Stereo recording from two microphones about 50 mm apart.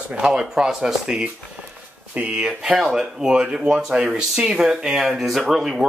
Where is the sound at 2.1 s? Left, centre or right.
Right.